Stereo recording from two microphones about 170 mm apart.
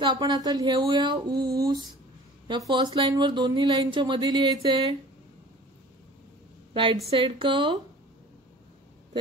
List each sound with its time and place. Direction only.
0.0 s speech: 25° right (ahead or behind)
6.7 s a woman's voice: 30° right (ahead or behind)